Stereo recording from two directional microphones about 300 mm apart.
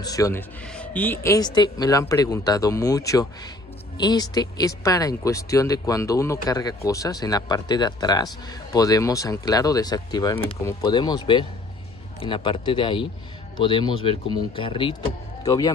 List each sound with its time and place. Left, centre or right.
0.0 s speech: centre